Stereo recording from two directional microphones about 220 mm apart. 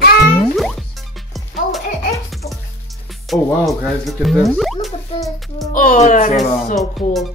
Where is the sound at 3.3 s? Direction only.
Centre (ahead or behind).